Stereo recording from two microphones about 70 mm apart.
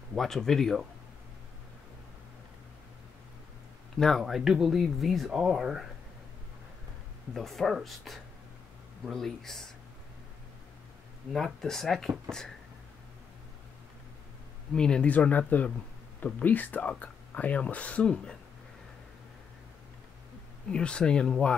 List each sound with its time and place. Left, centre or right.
0.1 s speech: centre
4.0 s speech: centre
7.3 s speech: centre
11.3 s speech: centre
14.7 s speech: centre
20.7 s speech: centre